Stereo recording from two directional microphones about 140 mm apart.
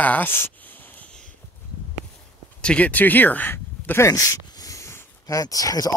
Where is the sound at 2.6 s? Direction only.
10° left (ahead or behind).